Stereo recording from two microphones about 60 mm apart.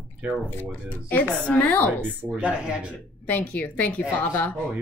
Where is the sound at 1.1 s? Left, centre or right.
Left.